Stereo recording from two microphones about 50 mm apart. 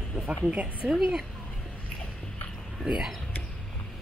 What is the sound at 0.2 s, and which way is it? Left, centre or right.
Speech, right.